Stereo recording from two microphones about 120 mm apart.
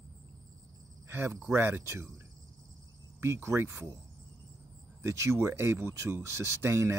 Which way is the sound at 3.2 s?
20° right (ahead or behind).